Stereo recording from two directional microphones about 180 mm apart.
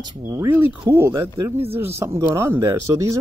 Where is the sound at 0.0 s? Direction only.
15° right (ahead or behind).